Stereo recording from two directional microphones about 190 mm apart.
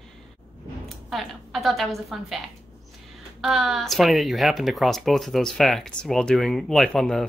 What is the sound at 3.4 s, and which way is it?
Speech, centre (ahead or behind).